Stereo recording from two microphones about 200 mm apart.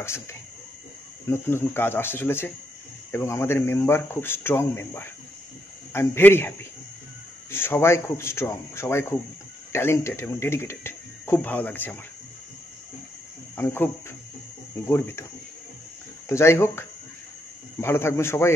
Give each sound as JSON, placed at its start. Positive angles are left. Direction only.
{"t": 0.0, "sound": "speech", "side_deg": 15}
{"t": 7.5, "sound": "speech", "side_deg": 10}
{"t": 13.6, "sound": "speech", "side_deg": 10}
{"t": 14.9, "sound": "speech", "side_deg": 10}
{"t": 16.3, "sound": "speech", "side_deg": 15}